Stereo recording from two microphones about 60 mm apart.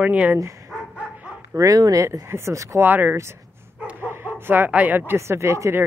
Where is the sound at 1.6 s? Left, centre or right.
Right.